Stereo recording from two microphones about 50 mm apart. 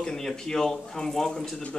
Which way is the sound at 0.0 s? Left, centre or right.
Centre.